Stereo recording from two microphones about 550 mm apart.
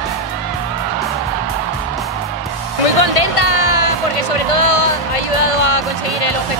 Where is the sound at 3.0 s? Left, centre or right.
Left.